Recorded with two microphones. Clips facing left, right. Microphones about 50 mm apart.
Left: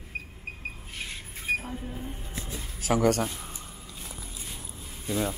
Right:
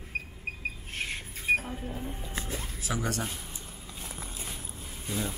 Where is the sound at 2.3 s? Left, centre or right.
Right.